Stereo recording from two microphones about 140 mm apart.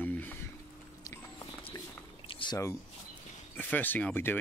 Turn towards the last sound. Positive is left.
turn(degrees=15)  # may be behind; listen again after turning